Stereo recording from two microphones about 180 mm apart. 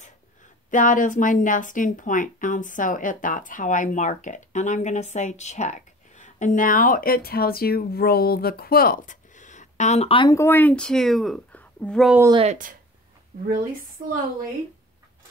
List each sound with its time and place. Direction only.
0.7 s speech: 45° left (ahead or behind); by 10.3 s 30° left (ahead or behind)
10.3 s a woman's voice: 15° left (ahead or behind)
12.4 s speech: 50° right (ahead or behind)